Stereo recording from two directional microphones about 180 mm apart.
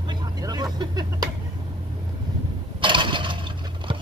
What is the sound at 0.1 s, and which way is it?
Vehicle, 20° right (ahead or behind).